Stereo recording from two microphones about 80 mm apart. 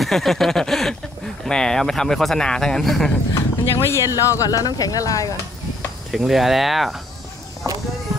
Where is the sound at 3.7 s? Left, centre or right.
Left.